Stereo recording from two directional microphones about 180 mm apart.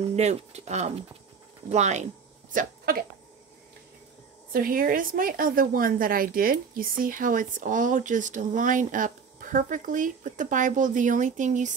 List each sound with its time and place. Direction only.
0.1 s speech: 40° right (ahead or behind)
2.5 s speech: 55° right (ahead or behind)
4.5 s a woman's voice: 50° right (ahead or behind)